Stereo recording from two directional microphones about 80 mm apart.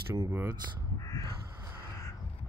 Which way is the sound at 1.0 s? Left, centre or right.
Left.